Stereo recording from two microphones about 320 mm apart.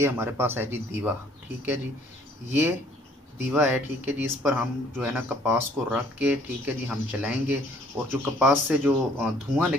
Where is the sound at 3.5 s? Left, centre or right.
Centre.